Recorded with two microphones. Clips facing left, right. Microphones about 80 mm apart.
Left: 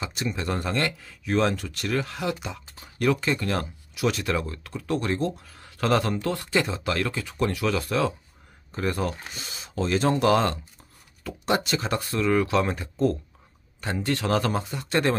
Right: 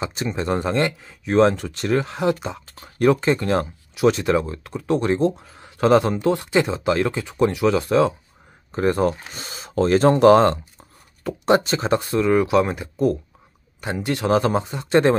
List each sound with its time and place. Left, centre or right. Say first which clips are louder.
0.0 s speech: right 5 dB; right